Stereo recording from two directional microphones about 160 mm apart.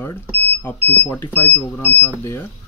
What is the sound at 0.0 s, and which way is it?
Speech, 15° left (ahead or behind).